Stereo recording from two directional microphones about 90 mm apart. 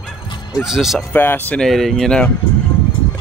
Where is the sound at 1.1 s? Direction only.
20° left (ahead or behind).